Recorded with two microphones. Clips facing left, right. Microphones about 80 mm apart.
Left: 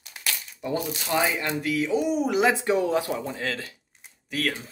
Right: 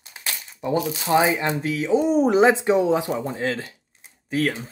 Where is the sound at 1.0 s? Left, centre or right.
Right.